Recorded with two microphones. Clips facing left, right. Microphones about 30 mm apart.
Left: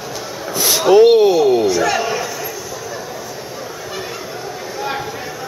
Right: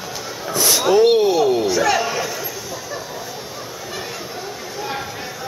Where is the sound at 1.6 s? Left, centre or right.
Centre.